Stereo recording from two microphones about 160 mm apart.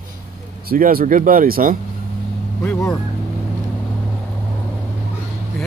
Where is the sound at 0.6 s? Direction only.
65° right (ahead or behind).